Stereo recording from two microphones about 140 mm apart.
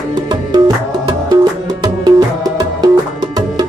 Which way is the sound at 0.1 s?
30° right (ahead or behind).